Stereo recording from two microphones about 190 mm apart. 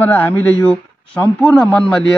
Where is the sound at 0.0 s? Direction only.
10° left (ahead or behind).